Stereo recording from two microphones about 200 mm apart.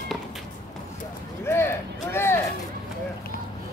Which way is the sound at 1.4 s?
10° left (ahead or behind).